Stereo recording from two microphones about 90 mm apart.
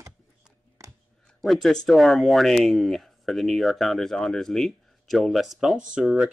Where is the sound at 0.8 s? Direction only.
35° right (ahead or behind).